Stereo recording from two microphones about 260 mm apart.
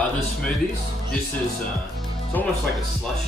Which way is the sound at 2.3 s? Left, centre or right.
Centre.